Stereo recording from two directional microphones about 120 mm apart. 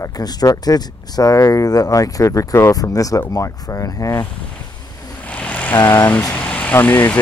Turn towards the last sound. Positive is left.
turn(degrees=15)  # may be behind; listen again after turning